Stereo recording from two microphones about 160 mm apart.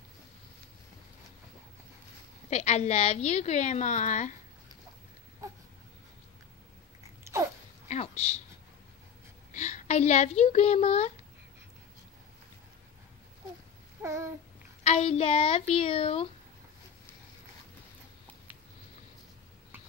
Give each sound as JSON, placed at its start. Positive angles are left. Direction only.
{"t": 2.5, "sound": "a woman's voice", "side_deg": 45}
{"t": 7.9, "sound": "a sound", "side_deg": 45}
{"t": 9.5, "sound": "a woman's voice", "side_deg": 50}
{"t": 14.0, "sound": "babbling", "side_deg": -20}
{"t": 14.8, "sound": "speech", "side_deg": 40}